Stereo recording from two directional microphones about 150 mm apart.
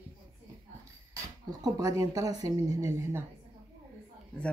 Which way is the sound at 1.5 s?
25° right (ahead or behind).